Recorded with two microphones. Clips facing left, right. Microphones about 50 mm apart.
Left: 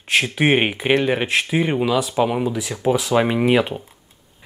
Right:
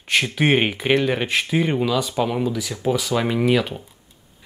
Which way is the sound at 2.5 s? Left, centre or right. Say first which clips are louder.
Left 2 dB; left.